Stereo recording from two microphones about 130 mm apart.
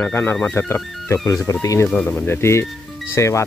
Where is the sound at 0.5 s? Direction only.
20° left (ahead or behind).